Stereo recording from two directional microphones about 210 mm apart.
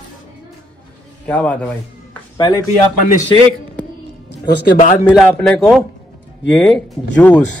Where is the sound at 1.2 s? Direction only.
5° left (ahead or behind).